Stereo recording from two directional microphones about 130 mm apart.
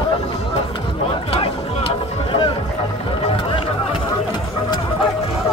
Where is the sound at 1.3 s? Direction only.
45° left (ahead or behind).